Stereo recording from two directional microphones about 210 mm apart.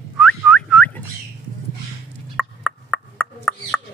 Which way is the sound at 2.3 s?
5° left (ahead or behind).